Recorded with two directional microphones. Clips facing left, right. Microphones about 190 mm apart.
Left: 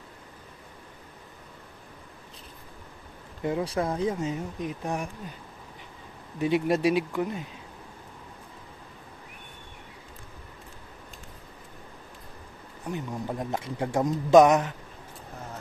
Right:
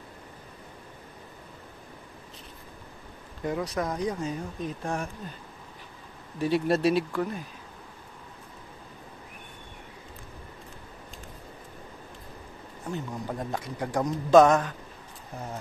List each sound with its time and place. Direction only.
3.4 s speech: 25° left (ahead or behind)
6.4 s speech: 15° left (ahead or behind)
12.9 s speech: 20° left (ahead or behind)